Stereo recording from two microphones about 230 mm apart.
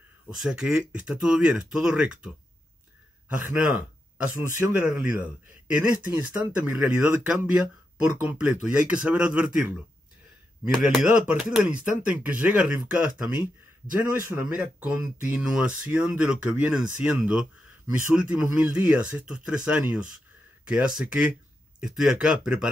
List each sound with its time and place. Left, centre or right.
0.4 s speech: centre
3.4 s speech: centre
14.1 s speech: centre